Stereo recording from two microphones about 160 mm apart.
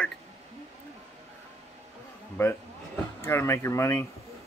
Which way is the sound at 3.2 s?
15° left (ahead or behind).